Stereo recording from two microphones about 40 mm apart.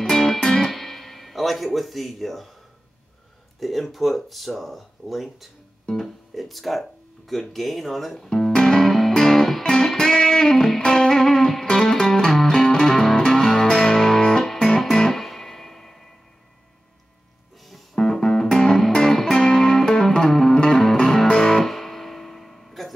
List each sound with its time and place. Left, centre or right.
0.1 s music: centre
0.7 s music: centre
3.5 s speech: centre
8.3 s music: centre
17.6 s music: centre